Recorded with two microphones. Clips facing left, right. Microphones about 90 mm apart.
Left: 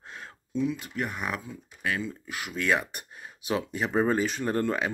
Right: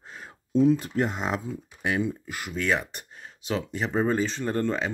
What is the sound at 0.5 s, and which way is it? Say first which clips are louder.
Speech: right 8 dB; 40° right (ahead or behind).